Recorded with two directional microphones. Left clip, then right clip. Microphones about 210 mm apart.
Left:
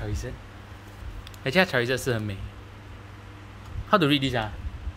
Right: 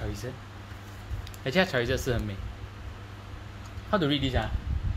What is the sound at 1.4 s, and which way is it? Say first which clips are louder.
Speech: left 3 dB; 20° left (ahead or behind).